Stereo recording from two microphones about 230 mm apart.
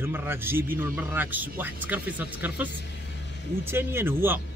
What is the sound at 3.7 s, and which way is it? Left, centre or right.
Speech, centre.